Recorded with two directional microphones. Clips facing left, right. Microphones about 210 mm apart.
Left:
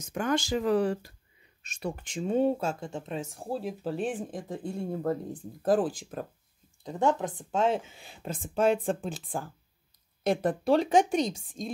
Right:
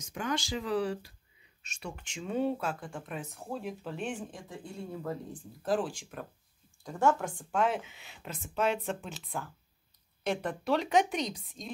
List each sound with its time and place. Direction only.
0.1 s speech: 45° left (ahead or behind)
6.8 s speech: 20° left (ahead or behind)